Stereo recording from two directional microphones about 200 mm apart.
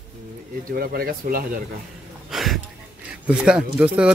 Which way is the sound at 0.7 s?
45° right (ahead or behind).